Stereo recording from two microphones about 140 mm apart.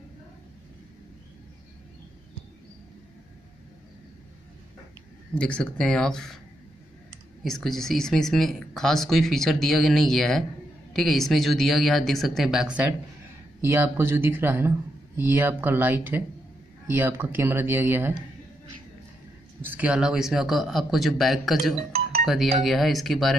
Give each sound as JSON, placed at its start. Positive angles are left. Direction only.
{"t": 5.3, "sound": "speech", "side_deg": 10}
{"t": 7.4, "sound": "speech", "side_deg": 5}
{"t": 13.6, "sound": "speech", "side_deg": -15}
{"t": 19.6, "sound": "speech", "side_deg": -10}